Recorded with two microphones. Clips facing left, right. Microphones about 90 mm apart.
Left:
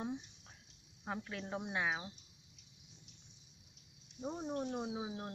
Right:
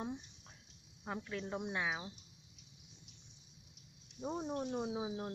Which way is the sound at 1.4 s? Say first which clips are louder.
Left 1 dB; 15° left (ahead or behind).